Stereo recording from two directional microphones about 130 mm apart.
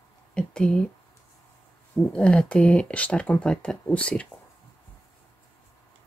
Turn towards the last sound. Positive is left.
turn(degrees=10)  # may be behind; listen again after turning